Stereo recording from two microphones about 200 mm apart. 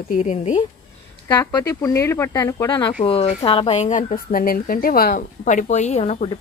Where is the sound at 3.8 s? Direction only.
35° left (ahead or behind).